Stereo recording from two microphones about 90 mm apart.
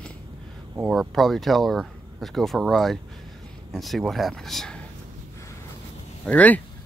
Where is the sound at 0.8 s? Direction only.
Centre (ahead or behind).